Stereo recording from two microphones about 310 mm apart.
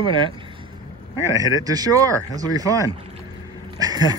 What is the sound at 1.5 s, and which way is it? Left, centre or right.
Speech, centre.